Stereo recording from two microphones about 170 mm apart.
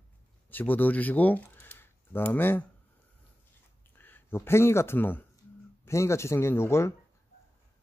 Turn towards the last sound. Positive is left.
turn(degrees=15)  # may be behind; listen again after turning